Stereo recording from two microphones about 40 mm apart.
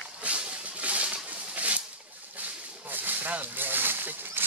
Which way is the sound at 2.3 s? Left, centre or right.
Right.